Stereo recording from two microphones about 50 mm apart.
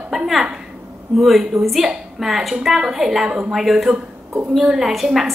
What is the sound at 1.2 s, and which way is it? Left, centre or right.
A woman's voice, centre.